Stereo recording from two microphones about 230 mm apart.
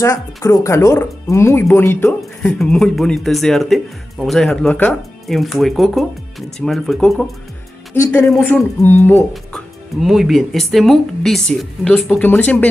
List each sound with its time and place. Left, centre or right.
0.0 s a man's voice: centre
9.3 s speech: centre